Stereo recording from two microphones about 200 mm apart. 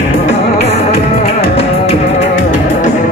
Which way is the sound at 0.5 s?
30° left (ahead or behind).